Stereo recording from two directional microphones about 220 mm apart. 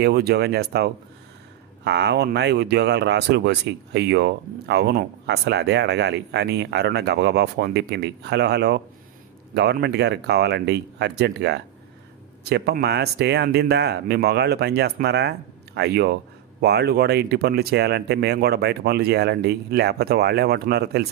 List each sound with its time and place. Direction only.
0.0 s speech: 45° right (ahead or behind)